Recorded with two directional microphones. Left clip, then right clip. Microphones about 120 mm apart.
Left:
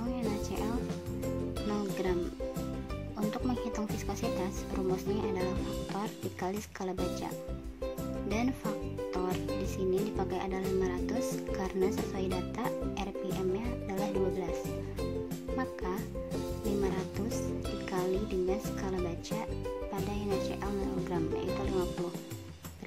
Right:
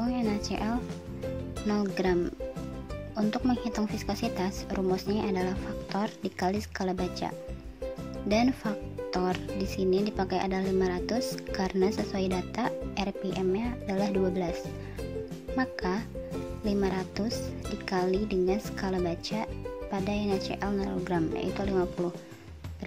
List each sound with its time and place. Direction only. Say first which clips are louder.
0.0 s music: right 4 dB; 35° right (ahead or behind)
1.7 s speech: right 6 dB; 35° right (ahead or behind)
3.2 s speech: right 5 dB; 30° right (ahead or behind)
8.3 s speech: right 8 dB; 30° right (ahead or behind)
15.5 s speech: right 5 dB; 35° right (ahead or behind)